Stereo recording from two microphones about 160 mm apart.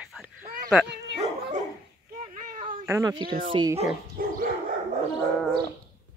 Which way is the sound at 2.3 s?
55° right (ahead or behind).